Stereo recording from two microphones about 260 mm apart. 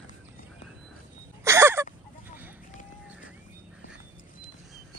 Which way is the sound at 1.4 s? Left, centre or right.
Centre.